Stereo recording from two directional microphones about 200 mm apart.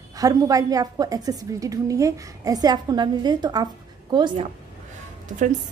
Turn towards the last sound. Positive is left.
turn(degrees=-40)  # may be behind; listen again after turning